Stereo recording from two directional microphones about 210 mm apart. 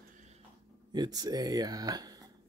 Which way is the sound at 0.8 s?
20° right (ahead or behind).